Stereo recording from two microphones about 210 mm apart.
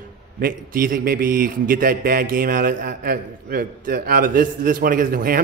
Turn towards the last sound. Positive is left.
turn(degrees=-45)  # may be behind; listen again after turning